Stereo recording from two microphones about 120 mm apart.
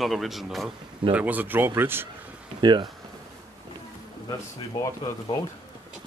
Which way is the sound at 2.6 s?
40° right (ahead or behind).